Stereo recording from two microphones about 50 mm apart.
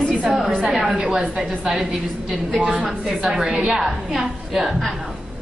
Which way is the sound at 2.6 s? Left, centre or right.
Right.